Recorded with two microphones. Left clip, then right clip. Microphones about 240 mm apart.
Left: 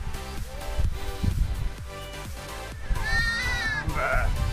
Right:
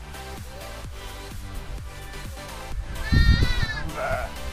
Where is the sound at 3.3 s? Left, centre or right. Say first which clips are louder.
Left 2 dB; right.